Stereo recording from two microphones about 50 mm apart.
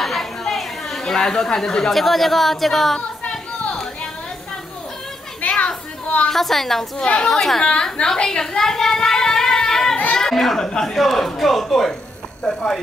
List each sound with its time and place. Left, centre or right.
0.0 s speech: centre
5.4 s children playing: left
6.2 s speech: centre
7.6 s a sound: centre
10.1 s speech: centre